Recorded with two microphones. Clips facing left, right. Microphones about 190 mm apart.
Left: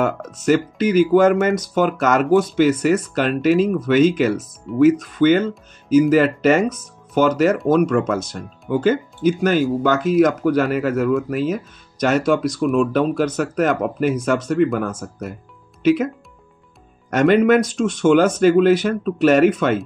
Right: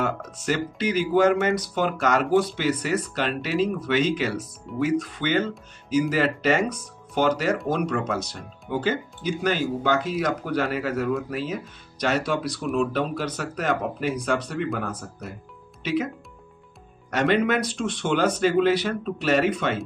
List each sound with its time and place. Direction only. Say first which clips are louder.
0.5 s speech: left 8 dB; 45° left (ahead or behind)
17.1 s speech: left 8 dB; 45° left (ahead or behind)